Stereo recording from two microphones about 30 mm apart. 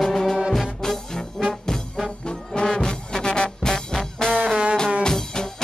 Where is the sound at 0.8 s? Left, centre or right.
Centre.